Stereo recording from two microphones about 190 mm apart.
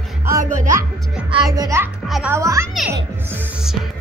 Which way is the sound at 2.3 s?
15° right (ahead or behind).